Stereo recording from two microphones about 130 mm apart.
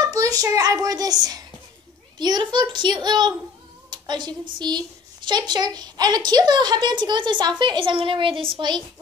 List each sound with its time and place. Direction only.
0.0 s a child's voice: 25° right (ahead or behind)